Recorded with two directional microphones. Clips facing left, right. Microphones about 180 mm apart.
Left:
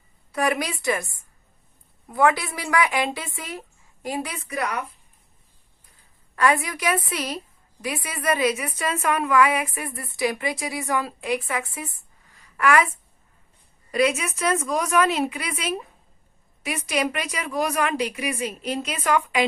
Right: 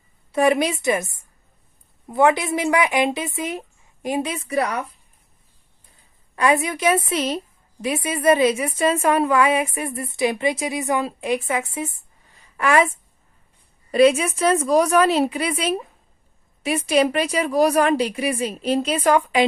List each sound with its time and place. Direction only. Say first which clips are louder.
0.3 s a woman's voice: right 6 dB; 25° right (ahead or behind)
6.3 s a woman's voice: right 2 dB; 20° right (ahead or behind)
13.9 s a woman's voice: right 7 dB; 30° right (ahead or behind)